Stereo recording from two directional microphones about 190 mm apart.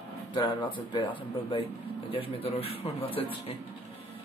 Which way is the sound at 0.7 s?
25° left (ahead or behind).